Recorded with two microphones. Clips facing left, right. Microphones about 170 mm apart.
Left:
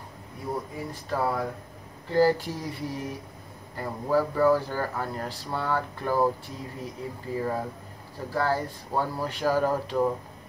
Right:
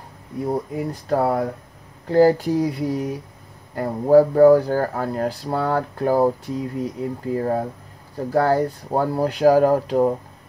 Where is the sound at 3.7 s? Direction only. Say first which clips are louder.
Right 11 dB; 50° right (ahead or behind).